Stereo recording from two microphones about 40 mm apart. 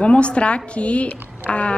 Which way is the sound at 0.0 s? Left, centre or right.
Left.